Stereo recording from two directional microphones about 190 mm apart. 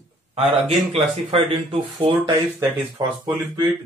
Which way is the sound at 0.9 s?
30° right (ahead or behind).